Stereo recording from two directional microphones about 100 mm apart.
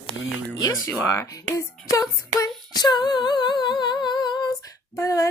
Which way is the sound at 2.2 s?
35° left (ahead or behind).